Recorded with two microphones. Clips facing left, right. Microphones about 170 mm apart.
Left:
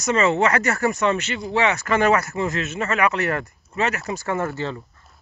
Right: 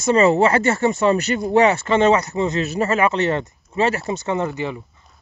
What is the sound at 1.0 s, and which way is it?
Speech, 40° right (ahead or behind).